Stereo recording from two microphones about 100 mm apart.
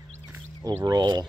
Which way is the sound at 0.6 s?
40° right (ahead or behind).